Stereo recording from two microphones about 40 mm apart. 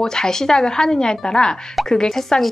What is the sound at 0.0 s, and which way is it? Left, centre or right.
Speech, centre.